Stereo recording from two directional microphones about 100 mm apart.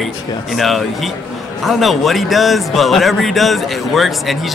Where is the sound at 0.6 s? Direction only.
Centre (ahead or behind).